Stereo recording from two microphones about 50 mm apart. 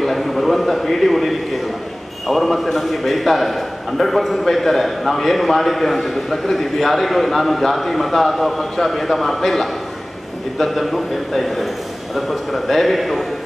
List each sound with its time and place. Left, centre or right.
0.0 s a man's voice: centre